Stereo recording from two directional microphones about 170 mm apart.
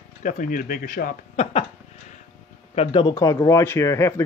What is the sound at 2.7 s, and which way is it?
Speech, 30° left (ahead or behind).